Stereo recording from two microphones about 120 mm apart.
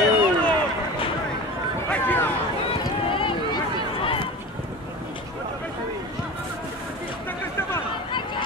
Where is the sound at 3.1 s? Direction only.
45° left (ahead or behind).